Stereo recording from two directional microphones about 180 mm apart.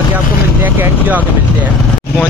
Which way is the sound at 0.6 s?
10° right (ahead or behind).